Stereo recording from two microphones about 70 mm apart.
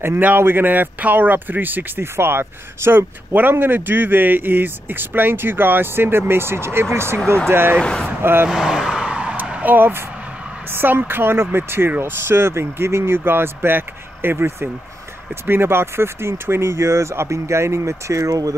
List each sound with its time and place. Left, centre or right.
0.2 s speech: right
7.8 s speech: centre
8.2 s speech: right
8.5 s vehicle: centre
9.5 s speech: right